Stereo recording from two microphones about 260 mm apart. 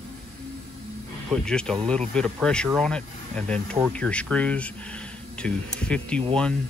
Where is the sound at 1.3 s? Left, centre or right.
Centre.